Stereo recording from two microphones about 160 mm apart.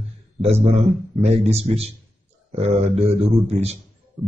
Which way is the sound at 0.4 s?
40° right (ahead or behind).